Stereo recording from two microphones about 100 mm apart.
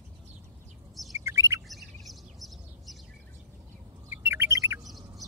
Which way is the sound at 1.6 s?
Centre (ahead or behind).